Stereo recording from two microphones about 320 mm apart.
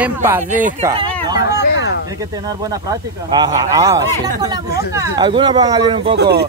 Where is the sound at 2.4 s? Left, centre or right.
Centre.